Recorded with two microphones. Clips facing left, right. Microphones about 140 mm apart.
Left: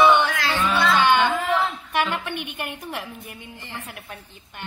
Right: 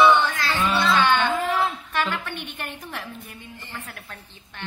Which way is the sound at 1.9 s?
15° left (ahead or behind).